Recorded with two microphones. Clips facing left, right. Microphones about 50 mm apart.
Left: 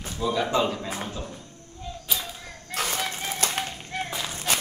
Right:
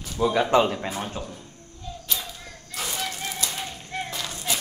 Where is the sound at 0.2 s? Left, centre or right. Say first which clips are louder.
Right 4 dB; right.